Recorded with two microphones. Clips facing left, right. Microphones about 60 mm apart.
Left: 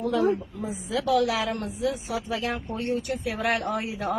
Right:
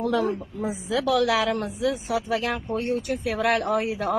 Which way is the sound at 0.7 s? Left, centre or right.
Right.